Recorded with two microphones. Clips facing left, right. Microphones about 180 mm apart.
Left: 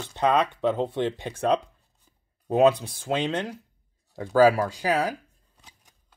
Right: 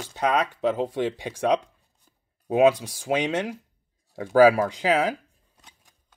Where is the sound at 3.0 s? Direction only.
15° right (ahead or behind).